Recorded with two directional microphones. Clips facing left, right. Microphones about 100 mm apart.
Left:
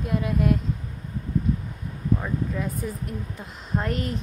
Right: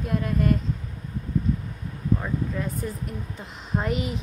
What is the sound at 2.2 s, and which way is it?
A woman's voice, centre (ahead or behind).